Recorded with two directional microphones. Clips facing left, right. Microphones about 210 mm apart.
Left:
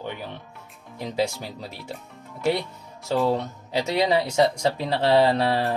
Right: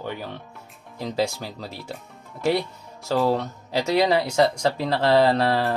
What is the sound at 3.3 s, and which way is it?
Speech, 15° left (ahead or behind).